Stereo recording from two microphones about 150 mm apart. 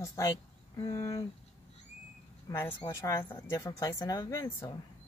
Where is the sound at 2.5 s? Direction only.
15° left (ahead or behind).